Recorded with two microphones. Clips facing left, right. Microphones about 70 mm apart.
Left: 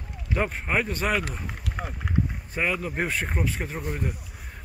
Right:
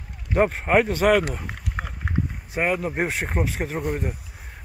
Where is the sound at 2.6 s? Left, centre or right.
Right.